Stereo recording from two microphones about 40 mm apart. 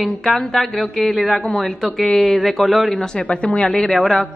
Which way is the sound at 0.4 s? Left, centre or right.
Centre.